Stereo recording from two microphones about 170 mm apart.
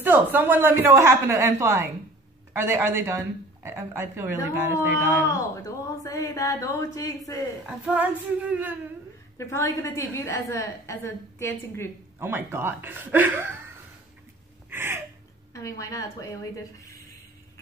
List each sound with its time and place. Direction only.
0.0 s speech: 10° right (ahead or behind)
5.3 s speech: 20° left (ahead or behind)
7.8 s speech: 10° right (ahead or behind)
9.4 s a woman's voice: 15° left (ahead or behind)
12.2 s speech: 15° right (ahead or behind)
14.7 s gasp: 15° right (ahead or behind)
15.5 s speech: 20° left (ahead or behind)